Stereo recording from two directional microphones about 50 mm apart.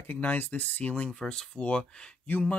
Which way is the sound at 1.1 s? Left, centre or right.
Centre.